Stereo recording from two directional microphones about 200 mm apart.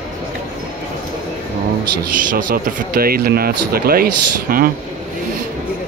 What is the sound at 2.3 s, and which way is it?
Speech, 45° right (ahead or behind).